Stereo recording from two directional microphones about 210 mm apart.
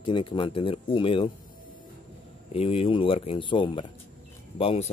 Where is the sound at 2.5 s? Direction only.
25° left (ahead or behind).